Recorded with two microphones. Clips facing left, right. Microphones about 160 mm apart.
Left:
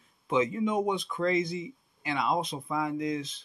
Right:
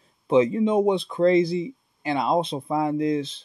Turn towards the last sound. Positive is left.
turn(degrees=-30)  # may be behind; listen again after turning